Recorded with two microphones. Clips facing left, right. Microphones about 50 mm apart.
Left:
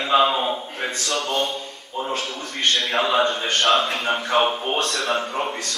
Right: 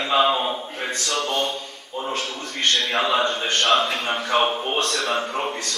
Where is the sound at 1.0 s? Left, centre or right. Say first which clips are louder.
Even; centre.